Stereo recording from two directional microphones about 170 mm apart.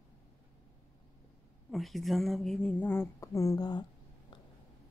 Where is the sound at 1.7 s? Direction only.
Centre (ahead or behind); by 3.8 s 25° left (ahead or behind).